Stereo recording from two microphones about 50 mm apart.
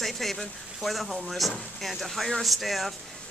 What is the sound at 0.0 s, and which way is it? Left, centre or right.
Speech, centre.